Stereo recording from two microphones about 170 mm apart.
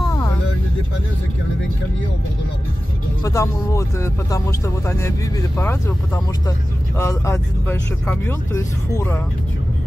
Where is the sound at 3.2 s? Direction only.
20° left (ahead or behind).